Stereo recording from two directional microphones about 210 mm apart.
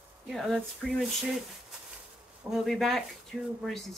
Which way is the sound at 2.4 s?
Centre (ahead or behind).